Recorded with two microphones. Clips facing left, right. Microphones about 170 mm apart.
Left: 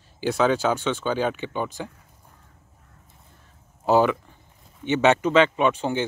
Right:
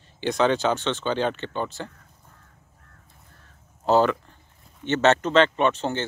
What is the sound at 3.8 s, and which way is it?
Speech, 10° left (ahead or behind).